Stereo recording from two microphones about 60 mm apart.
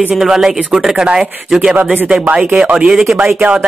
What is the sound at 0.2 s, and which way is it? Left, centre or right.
Speech, centre.